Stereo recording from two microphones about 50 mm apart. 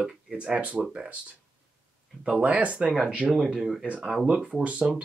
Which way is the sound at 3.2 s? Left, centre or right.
Centre.